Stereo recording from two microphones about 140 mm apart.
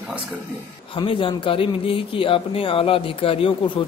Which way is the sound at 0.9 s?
40° left (ahead or behind).